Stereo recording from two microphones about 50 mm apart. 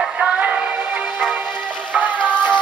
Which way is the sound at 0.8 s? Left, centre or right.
Right.